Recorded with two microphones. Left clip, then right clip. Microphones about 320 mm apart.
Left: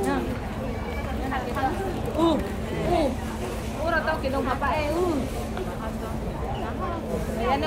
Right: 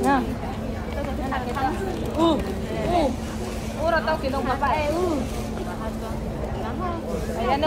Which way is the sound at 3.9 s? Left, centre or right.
Centre.